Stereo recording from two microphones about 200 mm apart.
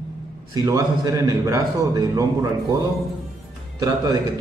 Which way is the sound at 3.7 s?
20° right (ahead or behind).